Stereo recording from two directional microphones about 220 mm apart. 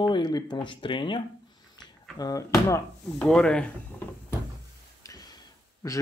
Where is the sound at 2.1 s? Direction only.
15° left (ahead or behind).